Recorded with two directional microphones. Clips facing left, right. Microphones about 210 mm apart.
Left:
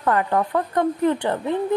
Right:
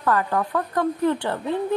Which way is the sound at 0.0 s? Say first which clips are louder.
Left 2 dB; 20° left (ahead or behind).